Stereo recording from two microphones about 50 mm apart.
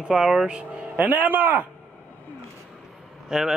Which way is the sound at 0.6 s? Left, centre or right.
Right.